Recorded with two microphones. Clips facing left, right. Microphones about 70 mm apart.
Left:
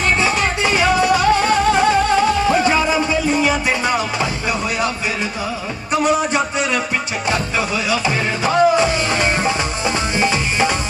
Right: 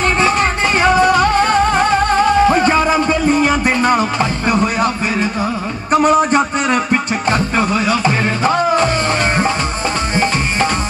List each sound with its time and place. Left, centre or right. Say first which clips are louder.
0.2 s music: right 3 dB; right
5.9 s a sound: right 5 dB; right
7.2 s music: right 4 dB; right